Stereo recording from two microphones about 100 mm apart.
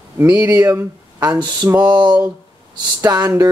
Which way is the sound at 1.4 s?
45° right (ahead or behind).